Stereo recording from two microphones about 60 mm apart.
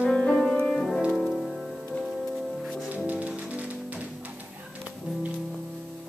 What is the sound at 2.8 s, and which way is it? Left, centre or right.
Music, right.